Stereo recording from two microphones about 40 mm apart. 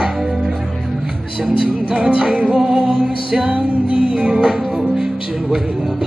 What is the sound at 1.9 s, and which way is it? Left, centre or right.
Music, right.